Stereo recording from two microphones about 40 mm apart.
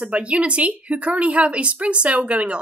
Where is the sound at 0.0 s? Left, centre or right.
Right.